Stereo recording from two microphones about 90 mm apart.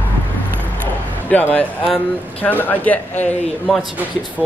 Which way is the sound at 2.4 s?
20° left (ahead or behind).